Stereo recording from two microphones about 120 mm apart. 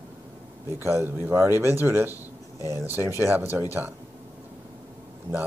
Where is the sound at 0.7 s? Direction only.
20° right (ahead or behind).